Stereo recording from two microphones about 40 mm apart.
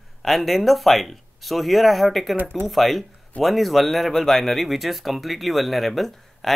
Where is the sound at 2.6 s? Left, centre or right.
Centre.